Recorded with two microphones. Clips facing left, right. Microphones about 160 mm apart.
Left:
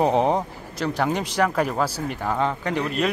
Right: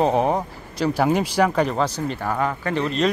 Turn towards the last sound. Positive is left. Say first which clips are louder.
# right 2 dB
turn(degrees=10)  # may be behind; listen again after turning